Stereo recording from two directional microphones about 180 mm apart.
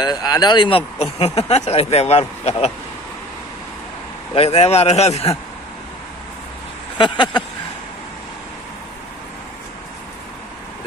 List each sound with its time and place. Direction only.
0.0 s speech: 20° left (ahead or behind)
4.4 s speech: 35° left (ahead or behind)
7.0 s speech: 25° left (ahead or behind)